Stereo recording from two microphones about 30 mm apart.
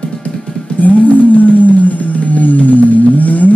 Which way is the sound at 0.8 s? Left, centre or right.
Left.